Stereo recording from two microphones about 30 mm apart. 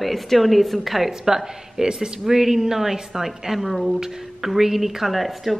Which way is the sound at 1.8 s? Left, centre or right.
Right.